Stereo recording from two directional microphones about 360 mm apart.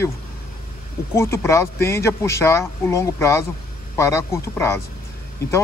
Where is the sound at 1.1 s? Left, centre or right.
Centre.